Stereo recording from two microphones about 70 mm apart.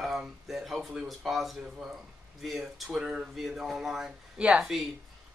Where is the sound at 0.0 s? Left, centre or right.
Centre.